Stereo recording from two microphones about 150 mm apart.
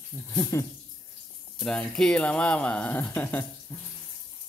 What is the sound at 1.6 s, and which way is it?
Speech, 5° left (ahead or behind).